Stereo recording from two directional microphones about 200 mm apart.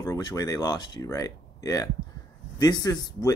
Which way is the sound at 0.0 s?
15° left (ahead or behind).